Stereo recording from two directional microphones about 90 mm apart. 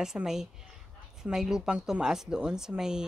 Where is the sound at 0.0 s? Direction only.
5° right (ahead or behind).